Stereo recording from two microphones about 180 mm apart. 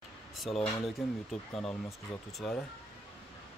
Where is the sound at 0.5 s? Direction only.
30° left (ahead or behind).